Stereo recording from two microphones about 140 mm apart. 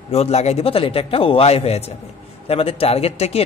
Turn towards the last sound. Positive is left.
turn(degrees=45)  # may be behind; listen again after turning